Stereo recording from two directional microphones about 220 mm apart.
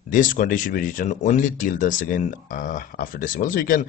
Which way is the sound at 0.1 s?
35° left (ahead or behind).